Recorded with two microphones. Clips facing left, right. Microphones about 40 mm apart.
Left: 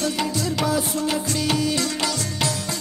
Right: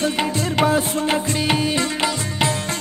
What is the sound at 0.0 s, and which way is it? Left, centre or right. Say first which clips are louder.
Music: right 3 dB; right.